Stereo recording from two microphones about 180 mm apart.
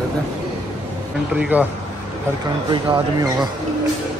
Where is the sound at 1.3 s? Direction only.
5° right (ahead or behind).